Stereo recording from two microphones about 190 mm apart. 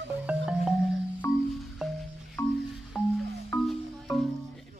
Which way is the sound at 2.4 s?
15° left (ahead or behind).